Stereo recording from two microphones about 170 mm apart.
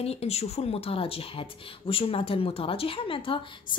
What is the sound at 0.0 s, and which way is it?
A woman's voice, 35° left (ahead or behind).